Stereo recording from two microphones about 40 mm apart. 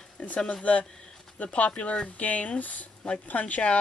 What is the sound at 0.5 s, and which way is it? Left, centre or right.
Speech, left.